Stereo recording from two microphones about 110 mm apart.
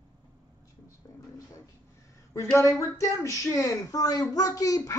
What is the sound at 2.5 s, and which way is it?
A man's voice, 30° left (ahead or behind).